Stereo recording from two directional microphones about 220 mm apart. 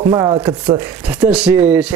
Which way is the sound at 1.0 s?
5° right (ahead or behind).